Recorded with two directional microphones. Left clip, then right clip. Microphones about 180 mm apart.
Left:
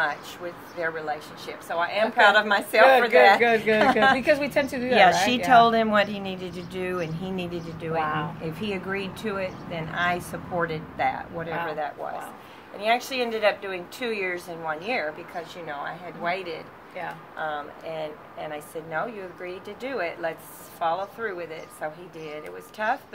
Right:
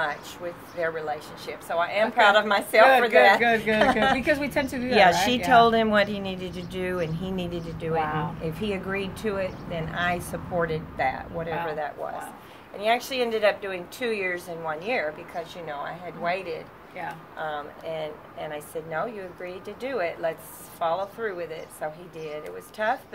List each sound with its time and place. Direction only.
0.7 s a woman's voice: 15° right (ahead or behind)
3.3 s a woman's voice: 15° left (ahead or behind)
4.9 s a woman's voice: 15° right (ahead or behind)
8.0 s a woman's voice: 10° left (ahead or behind)
8.4 s a woman's voice: 20° right (ahead or behind)